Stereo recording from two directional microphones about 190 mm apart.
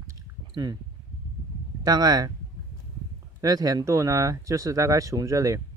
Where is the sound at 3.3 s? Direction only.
20° right (ahead or behind).